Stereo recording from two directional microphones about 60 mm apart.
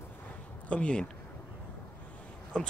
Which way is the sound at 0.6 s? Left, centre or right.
Centre.